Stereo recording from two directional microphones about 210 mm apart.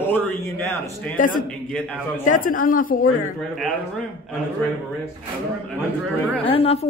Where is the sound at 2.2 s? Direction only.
40° left (ahead or behind).